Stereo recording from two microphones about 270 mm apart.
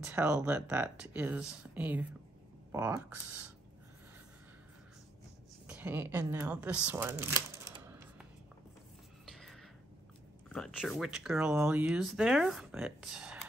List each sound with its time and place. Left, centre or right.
0.0 s speech: centre
5.7 s speech: centre
9.2 s a sound: centre
10.5 s speech: centre